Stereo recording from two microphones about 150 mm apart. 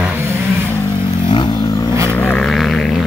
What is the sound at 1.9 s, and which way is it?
Vehicle, 20° right (ahead or behind).